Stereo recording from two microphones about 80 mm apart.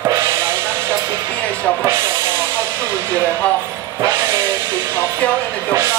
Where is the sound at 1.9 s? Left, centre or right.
Right.